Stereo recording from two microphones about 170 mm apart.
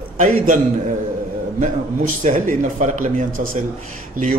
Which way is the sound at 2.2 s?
50° right (ahead or behind).